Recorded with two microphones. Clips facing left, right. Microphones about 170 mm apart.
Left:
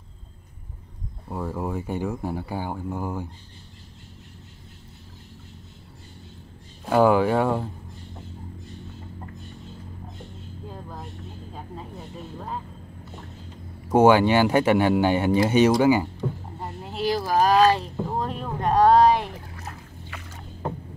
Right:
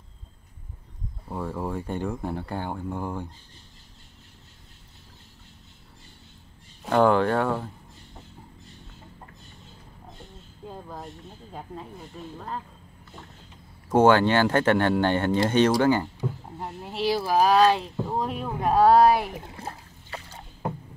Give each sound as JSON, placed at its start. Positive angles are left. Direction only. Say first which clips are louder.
{"t": 1.3, "sound": "speech", "louder": "left 1 dB", "side_deg": 5}
{"t": 6.8, "sound": "speech", "louder": "left 2 dB", "side_deg": 5}
{"t": 13.8, "sound": "speech", "louder": "left 2 dB", "side_deg": 10}
{"t": 16.2, "sound": "speech", "louder": "left 2 dB", "side_deg": 0}
{"t": 19.3, "sound": "splash", "louder": "right 2 dB", "side_deg": -25}